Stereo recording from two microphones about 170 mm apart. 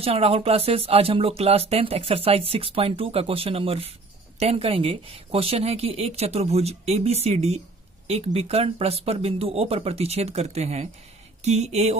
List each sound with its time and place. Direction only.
0.0 s speech: 35° right (ahead or behind)